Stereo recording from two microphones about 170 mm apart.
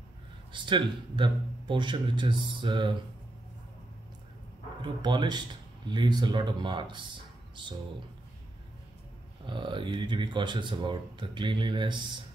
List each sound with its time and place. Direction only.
0.5 s speech: 30° right (ahead or behind)
4.8 s speech: 25° right (ahead or behind)
9.5 s speech: 30° right (ahead or behind)